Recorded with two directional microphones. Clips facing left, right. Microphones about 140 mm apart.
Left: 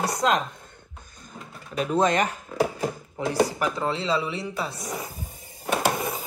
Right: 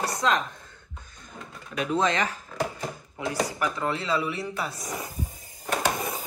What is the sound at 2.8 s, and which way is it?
Speech, 30° left (ahead or behind).